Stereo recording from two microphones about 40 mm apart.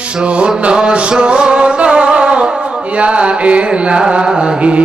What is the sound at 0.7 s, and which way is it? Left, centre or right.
Music, right.